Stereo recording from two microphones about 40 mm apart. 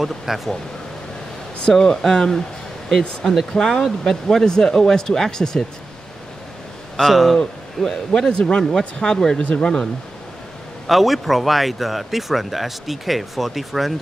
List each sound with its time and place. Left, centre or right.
0.0 s speech: centre
1.7 s speech: centre
7.0 s speech: centre
7.8 s speech: centre
8.7 s speech: centre
10.9 s speech: centre